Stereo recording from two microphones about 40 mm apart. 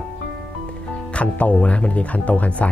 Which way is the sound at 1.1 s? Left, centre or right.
Left.